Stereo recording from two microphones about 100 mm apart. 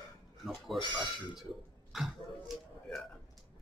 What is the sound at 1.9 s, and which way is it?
Speech, centre (ahead or behind).